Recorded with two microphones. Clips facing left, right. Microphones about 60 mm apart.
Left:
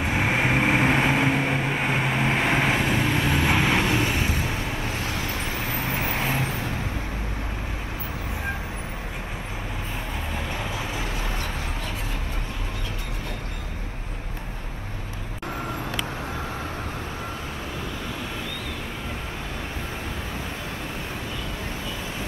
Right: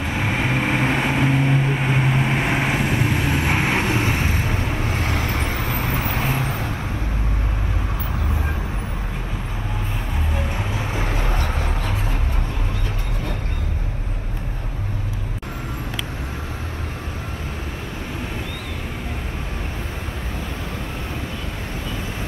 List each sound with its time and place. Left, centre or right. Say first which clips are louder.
0.0 s vehicle: even; left; by 2.0 s centre
2.0 s vehicle: right 2 dB; left
2.6 s vehicle: right 1 dB; right
11.0 s vehicle: right 5 dB; right